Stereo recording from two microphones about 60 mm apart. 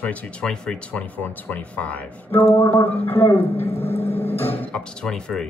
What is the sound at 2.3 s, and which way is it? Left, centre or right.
Speech, left.